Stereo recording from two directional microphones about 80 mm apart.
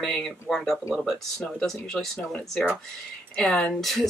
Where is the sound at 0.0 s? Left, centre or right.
Centre.